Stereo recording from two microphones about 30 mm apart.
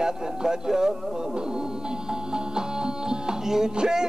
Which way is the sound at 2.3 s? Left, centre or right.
Right.